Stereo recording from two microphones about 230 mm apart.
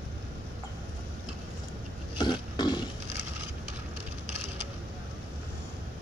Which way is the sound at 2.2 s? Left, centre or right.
Centre.